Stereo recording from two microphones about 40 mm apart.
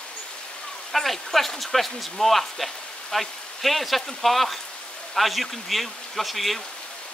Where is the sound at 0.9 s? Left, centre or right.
Centre.